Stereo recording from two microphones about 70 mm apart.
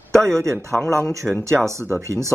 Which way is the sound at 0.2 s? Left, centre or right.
Right.